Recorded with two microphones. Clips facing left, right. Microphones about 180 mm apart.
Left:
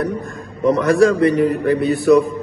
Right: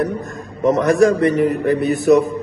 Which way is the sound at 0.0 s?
20° right (ahead or behind).